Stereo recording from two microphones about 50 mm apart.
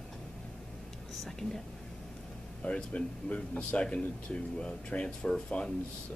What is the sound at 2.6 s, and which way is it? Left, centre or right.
Speech, left.